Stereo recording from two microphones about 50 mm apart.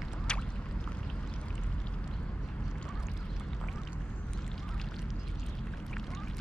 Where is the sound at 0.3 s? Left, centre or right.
Centre.